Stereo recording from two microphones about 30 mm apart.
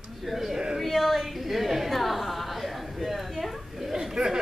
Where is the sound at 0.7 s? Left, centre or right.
Centre.